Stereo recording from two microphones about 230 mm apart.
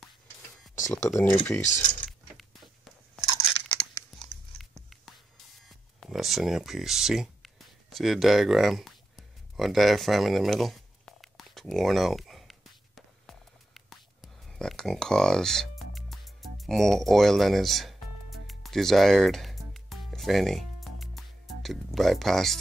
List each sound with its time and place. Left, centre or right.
1.3 s speech: centre
1.6 s speech: left
2.0 s a sound: centre
3.3 s crunch: left
3.7 s chewing: centre
5.9 s a sound: centre